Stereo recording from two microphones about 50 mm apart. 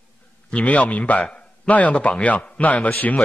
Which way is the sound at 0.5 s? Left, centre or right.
Left.